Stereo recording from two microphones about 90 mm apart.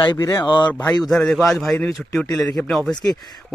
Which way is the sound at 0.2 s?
35° left (ahead or behind).